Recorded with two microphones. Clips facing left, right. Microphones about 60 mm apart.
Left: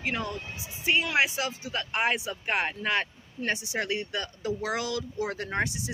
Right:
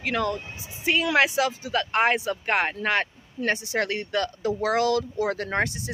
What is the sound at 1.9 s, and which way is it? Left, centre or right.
Speech, right.